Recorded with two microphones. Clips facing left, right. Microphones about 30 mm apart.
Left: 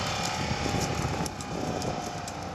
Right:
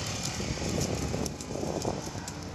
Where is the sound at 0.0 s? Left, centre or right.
Left.